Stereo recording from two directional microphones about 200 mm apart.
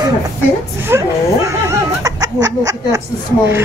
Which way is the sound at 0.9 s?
15° right (ahead or behind).